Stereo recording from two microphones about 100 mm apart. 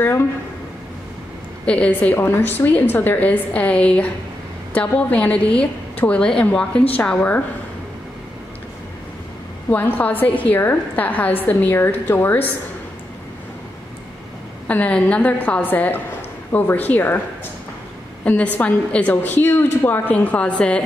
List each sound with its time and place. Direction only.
1.7 s a woman's voice: 15° left (ahead or behind)
9.7 s a woman's voice: 20° left (ahead or behind)
14.7 s a woman's voice: 15° left (ahead or behind)
18.2 s a woman's voice: 15° left (ahead or behind)